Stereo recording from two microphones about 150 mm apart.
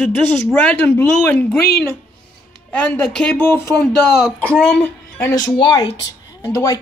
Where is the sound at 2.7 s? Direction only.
10° left (ahead or behind).